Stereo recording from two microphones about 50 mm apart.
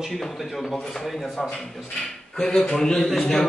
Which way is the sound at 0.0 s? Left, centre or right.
Centre.